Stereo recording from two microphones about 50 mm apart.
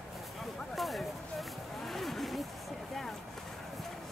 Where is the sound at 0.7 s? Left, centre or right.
Centre.